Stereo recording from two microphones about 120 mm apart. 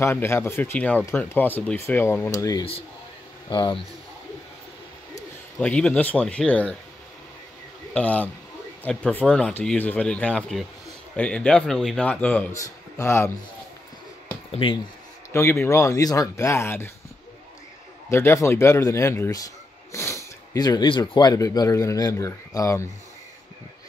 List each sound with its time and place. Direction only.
0.0 s speech: 20° left (ahead or behind)
3.4 s speech: 40° left (ahead or behind)
5.6 s speech: 10° left (ahead or behind)
7.9 s speech: 10° left (ahead or behind)
12.5 s speech: 25° left (ahead or behind)
14.5 s speech: 45° left (ahead or behind)
15.3 s speech: 20° left (ahead or behind)
18.1 s a man's voice: 20° left (ahead or behind)